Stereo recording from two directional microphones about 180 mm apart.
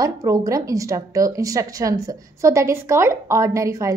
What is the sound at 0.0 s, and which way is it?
A woman's voice, 20° right (ahead or behind).